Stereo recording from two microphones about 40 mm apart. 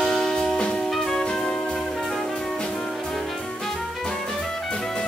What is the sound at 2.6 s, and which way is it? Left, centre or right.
Music, left.